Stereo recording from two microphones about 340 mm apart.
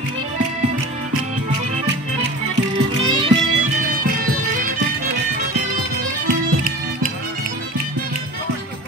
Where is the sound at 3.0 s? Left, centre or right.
Centre.